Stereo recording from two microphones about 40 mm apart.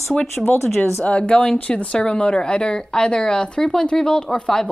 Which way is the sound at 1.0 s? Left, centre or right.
Left.